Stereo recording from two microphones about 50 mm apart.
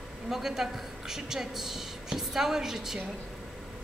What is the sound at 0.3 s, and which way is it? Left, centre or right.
A woman's voice, centre.